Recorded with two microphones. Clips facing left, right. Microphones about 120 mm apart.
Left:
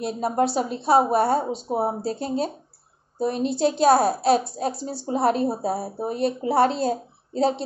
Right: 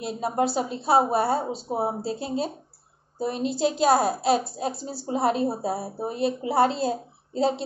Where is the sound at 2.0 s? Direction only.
45° left (ahead or behind).